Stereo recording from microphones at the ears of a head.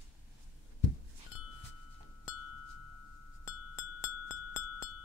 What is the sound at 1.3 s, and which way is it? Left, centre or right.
Wind chime, left.